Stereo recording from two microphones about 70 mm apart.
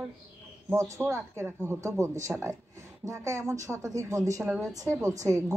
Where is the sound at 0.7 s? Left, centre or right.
Right.